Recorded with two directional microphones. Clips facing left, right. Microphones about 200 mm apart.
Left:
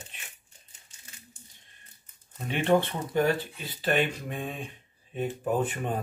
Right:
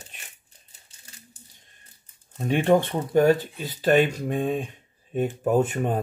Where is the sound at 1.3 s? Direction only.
35° right (ahead or behind).